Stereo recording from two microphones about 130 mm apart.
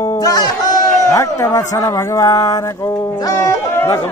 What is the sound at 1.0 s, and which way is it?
Speech, 25° left (ahead or behind).